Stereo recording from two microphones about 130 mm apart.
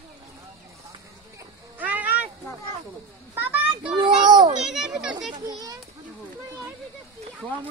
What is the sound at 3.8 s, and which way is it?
Speech, 40° right (ahead or behind).